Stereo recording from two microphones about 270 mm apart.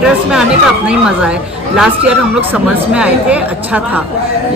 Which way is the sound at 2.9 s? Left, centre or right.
Centre.